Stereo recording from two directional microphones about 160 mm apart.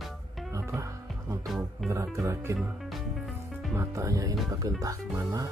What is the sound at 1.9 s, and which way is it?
Speech, 20° right (ahead or behind).